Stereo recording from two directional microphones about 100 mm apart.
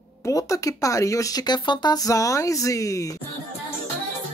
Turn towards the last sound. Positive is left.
turn(degrees=35)  # may be behind; listen again after turning